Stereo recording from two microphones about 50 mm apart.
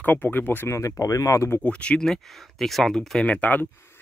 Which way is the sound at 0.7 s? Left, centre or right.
Left.